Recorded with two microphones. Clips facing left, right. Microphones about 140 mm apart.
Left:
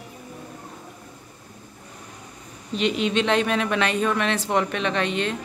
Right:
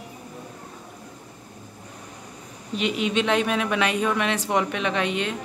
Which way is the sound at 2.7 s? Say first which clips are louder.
Left 2 dB; 10° right (ahead or behind).